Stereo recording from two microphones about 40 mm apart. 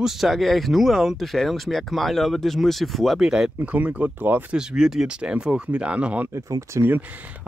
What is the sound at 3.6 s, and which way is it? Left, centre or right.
Speech, right.